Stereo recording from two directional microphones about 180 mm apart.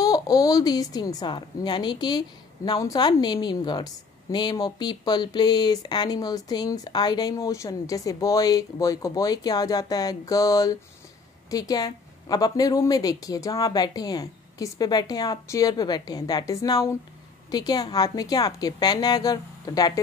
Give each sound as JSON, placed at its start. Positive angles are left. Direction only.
{"t": 0.0, "sound": "a woman's voice", "side_deg": 20}